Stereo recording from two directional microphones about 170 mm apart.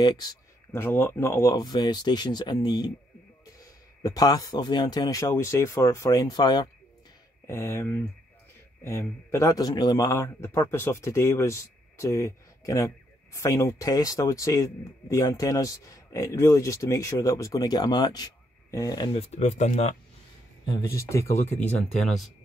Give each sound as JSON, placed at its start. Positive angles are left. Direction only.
{"t": 0.0, "sound": "a man's voice", "side_deg": 25}
{"t": 19.1, "sound": "speech", "side_deg": 40}
{"t": 21.0, "sound": "speech", "side_deg": 15}